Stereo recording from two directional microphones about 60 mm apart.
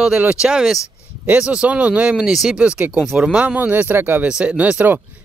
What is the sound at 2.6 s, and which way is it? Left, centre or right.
Speech, right.